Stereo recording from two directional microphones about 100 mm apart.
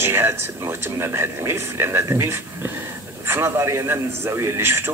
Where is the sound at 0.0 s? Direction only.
25° right (ahead or behind).